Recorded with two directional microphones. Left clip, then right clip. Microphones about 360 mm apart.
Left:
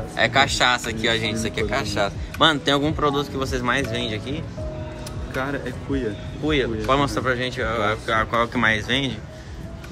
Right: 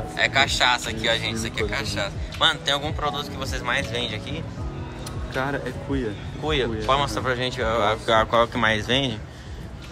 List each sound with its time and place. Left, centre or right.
0.1 s speech: centre
5.3 s speech: right
6.4 s speech: centre